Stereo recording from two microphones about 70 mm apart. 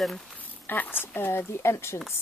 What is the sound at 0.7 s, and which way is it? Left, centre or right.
Speech, left.